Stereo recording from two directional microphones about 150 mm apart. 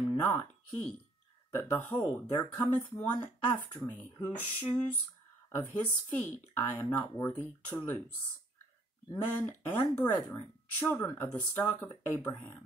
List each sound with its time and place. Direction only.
0.1 s speech: 15° left (ahead or behind)
1.5 s speech: 15° left (ahead or behind)
9.1 s speech: 15° left (ahead or behind)